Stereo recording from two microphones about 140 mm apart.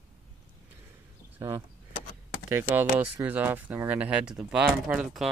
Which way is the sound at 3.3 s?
10° right (ahead or behind).